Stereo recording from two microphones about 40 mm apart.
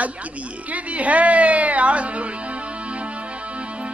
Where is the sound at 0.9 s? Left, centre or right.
Right.